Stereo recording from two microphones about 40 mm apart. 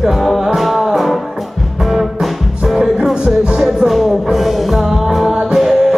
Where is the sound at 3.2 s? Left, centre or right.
Centre.